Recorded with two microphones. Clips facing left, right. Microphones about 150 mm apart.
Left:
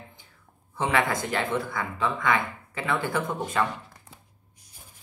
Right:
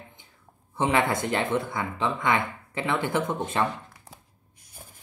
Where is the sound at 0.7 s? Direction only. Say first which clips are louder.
Right 1 dB; 25° right (ahead or behind).